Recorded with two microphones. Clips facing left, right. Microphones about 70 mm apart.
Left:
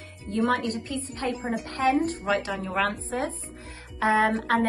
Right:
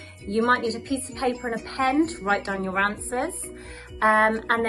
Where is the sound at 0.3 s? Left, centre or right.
Right.